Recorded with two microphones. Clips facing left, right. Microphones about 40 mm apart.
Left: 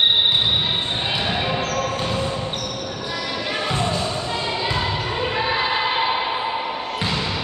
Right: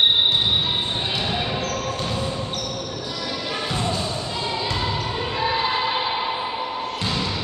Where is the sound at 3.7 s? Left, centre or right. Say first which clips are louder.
Left 2 dB; centre.